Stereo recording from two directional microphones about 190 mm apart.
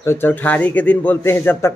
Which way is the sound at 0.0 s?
10° left (ahead or behind).